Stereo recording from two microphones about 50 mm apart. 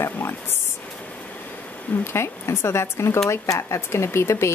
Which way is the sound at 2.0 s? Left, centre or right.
Left.